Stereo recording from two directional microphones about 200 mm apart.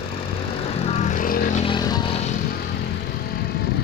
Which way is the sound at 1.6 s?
20° left (ahead or behind).